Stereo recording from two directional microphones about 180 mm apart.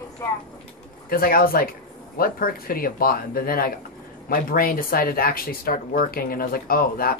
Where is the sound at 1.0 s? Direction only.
55° left (ahead or behind).